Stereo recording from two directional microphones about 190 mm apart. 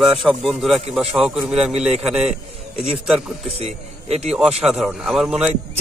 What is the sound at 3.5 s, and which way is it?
Speech, 30° right (ahead or behind).